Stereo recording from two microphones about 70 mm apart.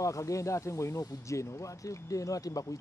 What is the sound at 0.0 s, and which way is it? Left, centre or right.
Speech, left.